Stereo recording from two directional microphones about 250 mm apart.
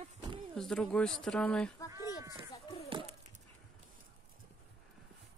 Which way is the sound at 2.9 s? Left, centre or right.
Centre.